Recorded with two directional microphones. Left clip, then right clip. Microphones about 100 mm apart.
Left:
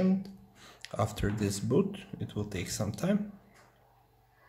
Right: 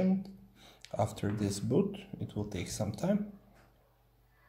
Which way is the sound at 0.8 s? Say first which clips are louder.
Left 1 dB; 20° left (ahead or behind).